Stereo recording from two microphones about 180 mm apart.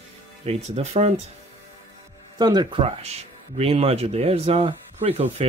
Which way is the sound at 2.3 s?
25° right (ahead or behind).